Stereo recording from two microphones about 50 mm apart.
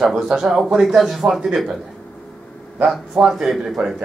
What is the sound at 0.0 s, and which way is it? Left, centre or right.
A man's voice, centre.